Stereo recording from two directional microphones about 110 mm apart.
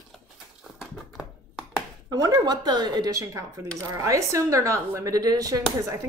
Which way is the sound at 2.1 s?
35° right (ahead or behind).